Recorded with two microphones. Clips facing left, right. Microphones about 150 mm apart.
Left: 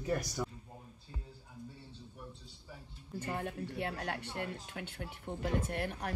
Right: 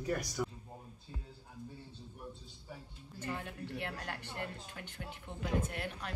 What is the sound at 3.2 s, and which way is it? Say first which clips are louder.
A woman's voice: left 2 dB; 50° left (ahead or behind).